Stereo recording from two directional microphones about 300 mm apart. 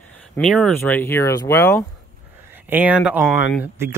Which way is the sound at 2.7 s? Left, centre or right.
Centre.